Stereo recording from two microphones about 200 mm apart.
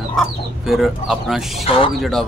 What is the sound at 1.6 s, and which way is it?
Speech, 25° left (ahead or behind).